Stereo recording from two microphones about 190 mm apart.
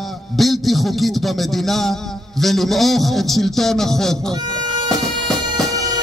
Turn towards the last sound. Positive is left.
turn(degrees=-20)  # may be behind; listen again after turning